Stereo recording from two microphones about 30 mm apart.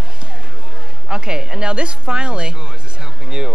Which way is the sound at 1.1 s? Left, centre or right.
Right.